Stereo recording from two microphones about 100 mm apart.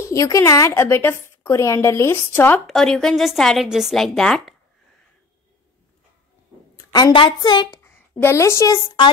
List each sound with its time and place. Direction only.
0.1 s a woman's voice: 30° left (ahead or behind)
2.6 s a woman's voice: 5° left (ahead or behind)
6.8 s a sound: 35° left (ahead or behind)
7.1 s a woman's voice: 55° left (ahead or behind)
8.2 s a woman's voice: 25° left (ahead or behind)